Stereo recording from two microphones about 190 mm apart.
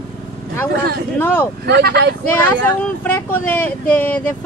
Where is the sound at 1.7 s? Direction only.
60° right (ahead or behind).